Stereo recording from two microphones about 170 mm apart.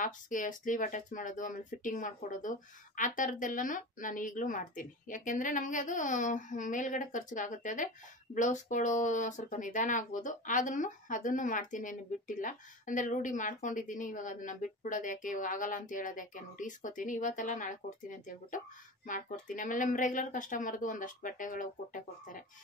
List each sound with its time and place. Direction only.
0.0 s speech: 50° left (ahead or behind)